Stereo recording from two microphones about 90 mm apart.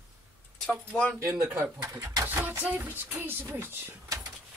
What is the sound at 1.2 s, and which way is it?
Speech, 25° right (ahead or behind).